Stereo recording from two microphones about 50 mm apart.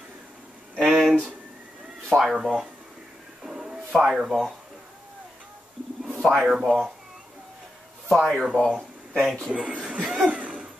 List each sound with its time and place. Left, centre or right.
0.7 s a sound: centre
2.0 s speech: centre
3.4 s a sound: centre
4.0 s a man's voice: centre
6.2 s a man's voice: centre
8.1 s speech: centre
9.5 s a man's voice: right
9.9 s cough: centre
10.4 s cough: right